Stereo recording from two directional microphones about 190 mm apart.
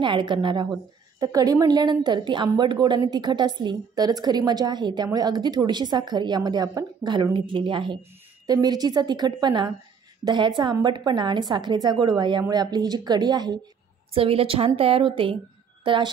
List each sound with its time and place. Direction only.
0.0 s a woman's voice: 25° right (ahead or behind)